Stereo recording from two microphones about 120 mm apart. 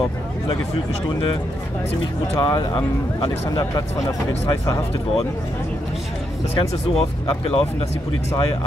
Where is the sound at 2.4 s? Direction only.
45° left (ahead or behind).